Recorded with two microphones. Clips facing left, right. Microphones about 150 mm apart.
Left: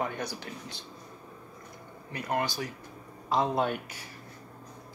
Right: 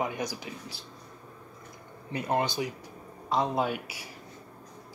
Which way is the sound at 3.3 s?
Centre (ahead or behind).